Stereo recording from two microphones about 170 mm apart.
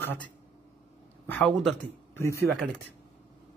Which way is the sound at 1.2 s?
10° left (ahead or behind).